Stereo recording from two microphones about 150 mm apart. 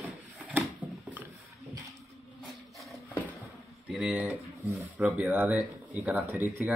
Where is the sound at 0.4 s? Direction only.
10° right (ahead or behind).